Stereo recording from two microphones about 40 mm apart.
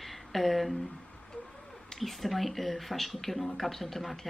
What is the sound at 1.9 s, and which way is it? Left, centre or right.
Speech, centre.